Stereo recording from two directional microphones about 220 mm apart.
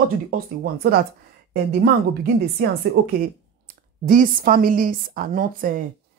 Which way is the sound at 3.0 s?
40° right (ahead or behind).